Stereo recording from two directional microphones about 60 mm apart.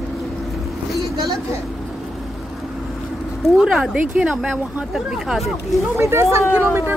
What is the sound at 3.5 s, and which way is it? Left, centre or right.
Speech, centre.